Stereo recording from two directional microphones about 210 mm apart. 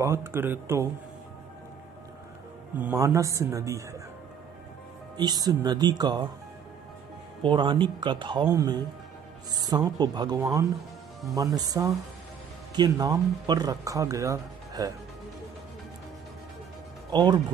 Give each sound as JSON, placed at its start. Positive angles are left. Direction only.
{"t": 0.0, "sound": "speech", "side_deg": -10}
{"t": 2.8, "sound": "speech", "side_deg": -15}
{"t": 5.1, "sound": "speech", "side_deg": -20}
{"t": 7.4, "sound": "speech", "side_deg": -20}
{"t": 17.1, "sound": "speech", "side_deg": -20}